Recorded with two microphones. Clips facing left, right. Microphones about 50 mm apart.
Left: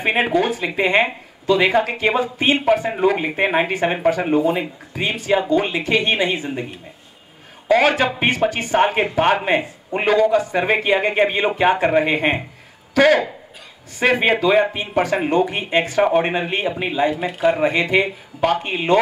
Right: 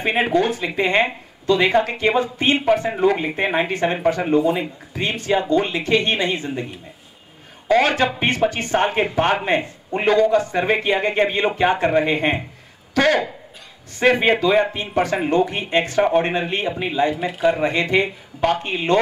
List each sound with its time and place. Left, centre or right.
0.0 s speech: centre
7.6 s speech: centre
17.1 s speech: centre